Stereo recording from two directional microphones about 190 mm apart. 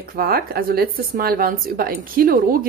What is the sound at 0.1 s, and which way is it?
A woman's voice, 50° right (ahead or behind).